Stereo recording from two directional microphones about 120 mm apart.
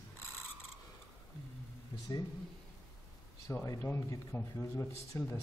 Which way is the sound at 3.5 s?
20° left (ahead or behind).